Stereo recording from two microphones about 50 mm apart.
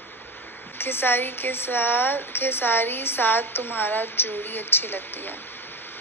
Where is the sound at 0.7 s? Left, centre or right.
Left.